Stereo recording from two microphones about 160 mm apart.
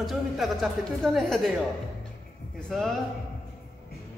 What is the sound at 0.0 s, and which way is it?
A woman's voice, centre (ahead or behind).